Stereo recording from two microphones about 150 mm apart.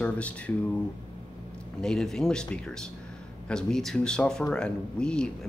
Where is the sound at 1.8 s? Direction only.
5° left (ahead or behind).